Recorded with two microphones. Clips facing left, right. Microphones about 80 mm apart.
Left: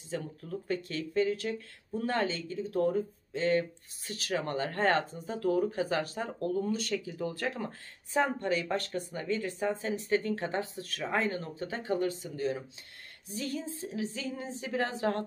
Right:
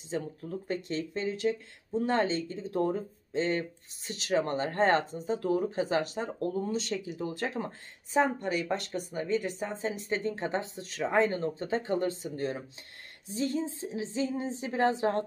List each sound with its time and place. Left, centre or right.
0.7 s speech: right
13.3 s speech: right